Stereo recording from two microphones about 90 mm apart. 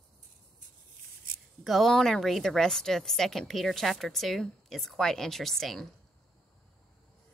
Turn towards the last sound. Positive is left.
turn(degrees=5)  # may be behind; listen again after turning